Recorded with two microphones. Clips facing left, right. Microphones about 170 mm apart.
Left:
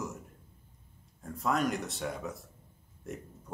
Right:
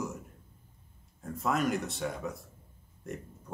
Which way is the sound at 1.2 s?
Centre (ahead or behind).